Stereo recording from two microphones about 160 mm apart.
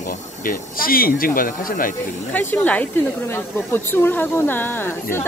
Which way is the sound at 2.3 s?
10° left (ahead or behind).